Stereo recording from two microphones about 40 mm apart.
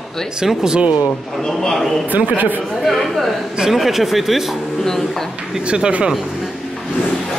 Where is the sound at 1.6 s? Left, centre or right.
Centre.